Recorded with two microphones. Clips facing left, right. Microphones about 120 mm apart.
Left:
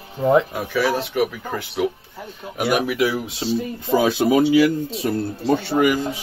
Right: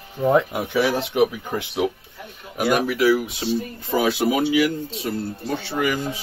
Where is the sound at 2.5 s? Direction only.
5° left (ahead or behind).